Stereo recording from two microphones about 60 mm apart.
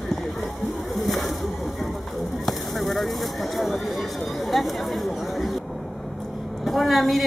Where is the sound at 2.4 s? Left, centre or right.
Centre.